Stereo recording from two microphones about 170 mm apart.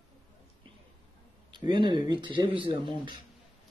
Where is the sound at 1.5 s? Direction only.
25° right (ahead or behind).